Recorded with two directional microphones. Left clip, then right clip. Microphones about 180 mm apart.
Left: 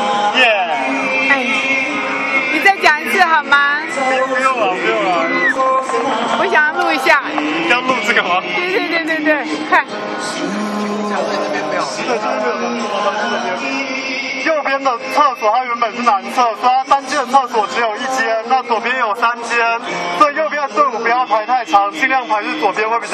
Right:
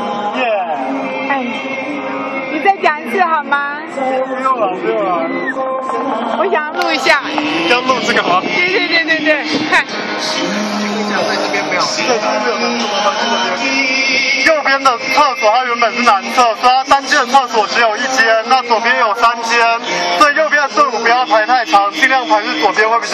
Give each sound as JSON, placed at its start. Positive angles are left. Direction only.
{"t": 2.6, "sound": "music", "side_deg": 10}
{"t": 6.4, "sound": "a sound", "side_deg": 5}
{"t": 7.6, "sound": "a man's voice", "side_deg": -5}
{"t": 14.4, "sound": "a man's voice", "side_deg": 0}